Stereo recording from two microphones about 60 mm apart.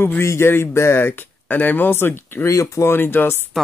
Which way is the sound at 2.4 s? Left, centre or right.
Left.